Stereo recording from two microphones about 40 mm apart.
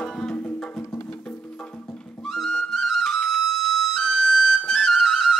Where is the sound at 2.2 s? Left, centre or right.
Centre.